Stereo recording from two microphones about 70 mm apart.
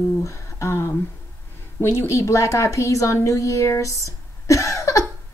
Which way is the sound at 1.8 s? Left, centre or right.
Left.